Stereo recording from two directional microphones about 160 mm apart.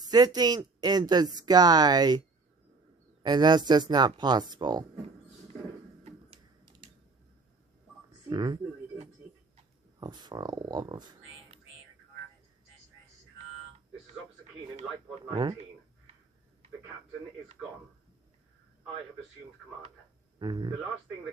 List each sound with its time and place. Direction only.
0.0 s speech: 25° right (ahead or behind)
6.0 s typing: 35° right (ahead or behind)
8.3 s speech: 30° right (ahead or behind)
9.9 s speech: 25° right (ahead or behind)
15.2 s speech: 30° right (ahead or behind)
20.3 s speech: 30° right (ahead or behind)